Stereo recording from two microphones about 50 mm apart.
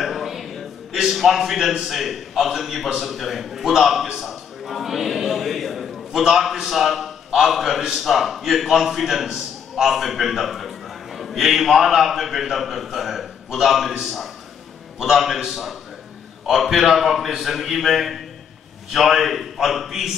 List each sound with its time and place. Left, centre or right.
0.0 s a man's voice: centre